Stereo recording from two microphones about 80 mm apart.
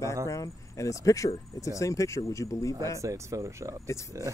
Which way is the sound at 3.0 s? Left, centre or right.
Right.